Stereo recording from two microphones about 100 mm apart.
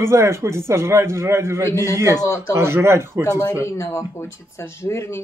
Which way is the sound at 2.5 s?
25° right (ahead or behind).